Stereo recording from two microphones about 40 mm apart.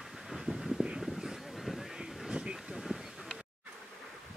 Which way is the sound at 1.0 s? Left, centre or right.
Centre.